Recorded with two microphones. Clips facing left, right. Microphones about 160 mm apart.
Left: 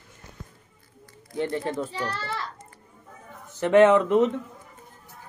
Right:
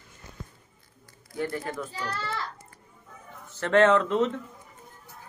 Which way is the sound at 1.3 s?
25° left (ahead or behind).